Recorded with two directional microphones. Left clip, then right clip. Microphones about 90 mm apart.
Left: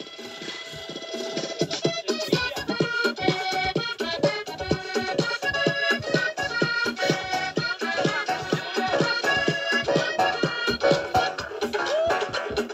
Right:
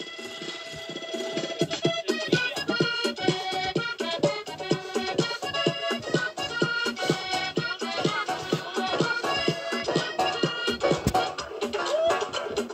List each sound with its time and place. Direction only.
1.3 s music: 50° right (ahead or behind); by 4.4 s 30° right (ahead or behind)
4.6 s music: 50° right (ahead or behind)
5.1 s music: 25° right (ahead or behind)
11.1 s music: 45° right (ahead or behind)
11.6 s music: 20° right (ahead or behind)